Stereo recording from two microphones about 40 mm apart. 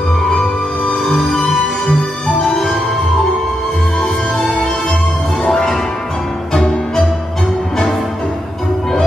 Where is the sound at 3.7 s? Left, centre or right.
Left.